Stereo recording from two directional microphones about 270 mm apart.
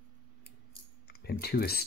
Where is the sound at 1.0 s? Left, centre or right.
Left.